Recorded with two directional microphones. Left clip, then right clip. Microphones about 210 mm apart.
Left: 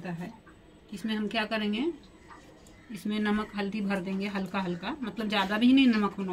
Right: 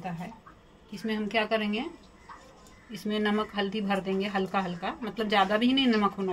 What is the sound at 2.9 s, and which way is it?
Speech, 45° right (ahead or behind).